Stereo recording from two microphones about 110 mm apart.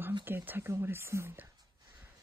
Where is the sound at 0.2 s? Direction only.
20° right (ahead or behind).